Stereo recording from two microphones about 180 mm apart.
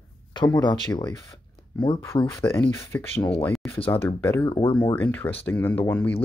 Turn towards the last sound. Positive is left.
turn(degrees=10)  # may be behind; listen again after turning